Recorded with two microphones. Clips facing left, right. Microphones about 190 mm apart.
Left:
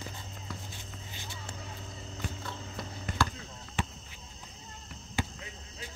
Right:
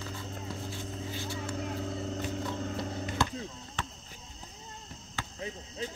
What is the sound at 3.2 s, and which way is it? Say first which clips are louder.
Chop: left 1 dB; 25° right (ahead or behind).